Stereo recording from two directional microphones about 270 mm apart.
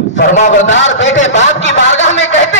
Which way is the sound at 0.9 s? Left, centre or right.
Left.